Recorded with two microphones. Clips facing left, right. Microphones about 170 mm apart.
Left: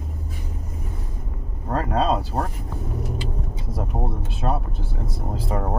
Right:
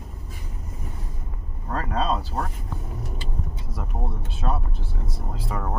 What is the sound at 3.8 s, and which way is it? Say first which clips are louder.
Speech: left 6 dB; 30° left (ahead or behind).